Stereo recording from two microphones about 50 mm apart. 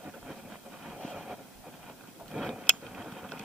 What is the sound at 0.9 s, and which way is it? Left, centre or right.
Train, centre.